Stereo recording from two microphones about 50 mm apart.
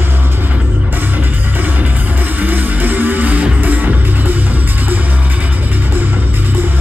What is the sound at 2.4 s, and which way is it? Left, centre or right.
Music, right.